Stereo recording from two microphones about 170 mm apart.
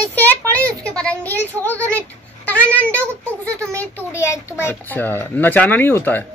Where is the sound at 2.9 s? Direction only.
15° right (ahead or behind).